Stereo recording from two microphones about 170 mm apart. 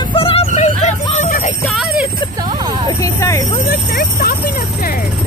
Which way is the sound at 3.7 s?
70° left (ahead or behind).